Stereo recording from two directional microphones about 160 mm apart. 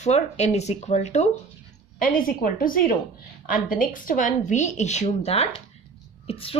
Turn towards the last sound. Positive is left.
turn(degrees=35)  # may be behind; listen again after turning